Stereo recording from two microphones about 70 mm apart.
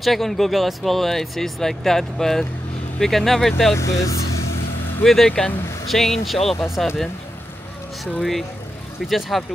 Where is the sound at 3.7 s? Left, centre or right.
Left.